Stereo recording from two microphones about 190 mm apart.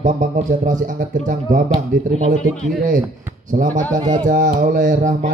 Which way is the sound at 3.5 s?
50° right (ahead or behind).